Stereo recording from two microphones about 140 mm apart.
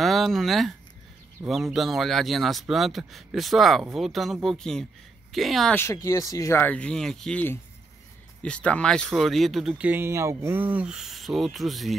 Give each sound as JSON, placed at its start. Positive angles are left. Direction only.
{"t": 0.0, "sound": "speech", "side_deg": 0}
{"t": 6.0, "sound": "speech", "side_deg": 25}